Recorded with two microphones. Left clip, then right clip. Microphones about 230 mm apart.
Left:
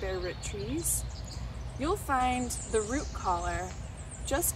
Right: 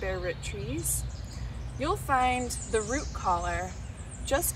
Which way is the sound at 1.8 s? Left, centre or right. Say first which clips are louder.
Right 3 dB; centre.